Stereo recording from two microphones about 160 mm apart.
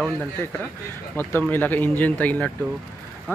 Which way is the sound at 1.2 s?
10° left (ahead or behind).